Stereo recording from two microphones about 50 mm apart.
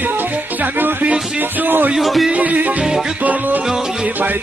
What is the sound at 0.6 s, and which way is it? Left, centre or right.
Music, right.